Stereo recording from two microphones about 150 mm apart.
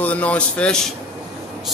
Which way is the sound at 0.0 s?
10° left (ahead or behind).